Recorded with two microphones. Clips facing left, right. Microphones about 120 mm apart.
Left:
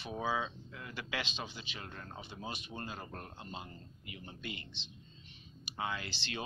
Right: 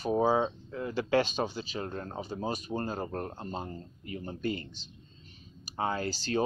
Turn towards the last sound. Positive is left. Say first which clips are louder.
# right 12 dB
turn(degrees=-40)  # may be behind; listen again after turning